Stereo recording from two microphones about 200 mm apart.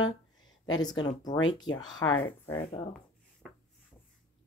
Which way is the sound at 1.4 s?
20° left (ahead or behind).